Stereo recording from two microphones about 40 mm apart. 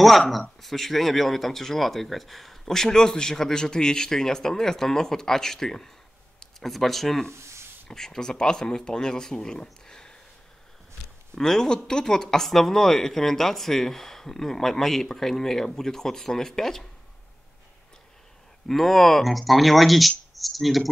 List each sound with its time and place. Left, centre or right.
0.3 s speech: centre
11.3 s speech: centre
18.7 s speech: centre